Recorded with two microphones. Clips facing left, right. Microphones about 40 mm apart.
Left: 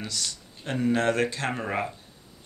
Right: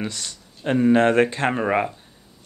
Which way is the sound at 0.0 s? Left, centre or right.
Right.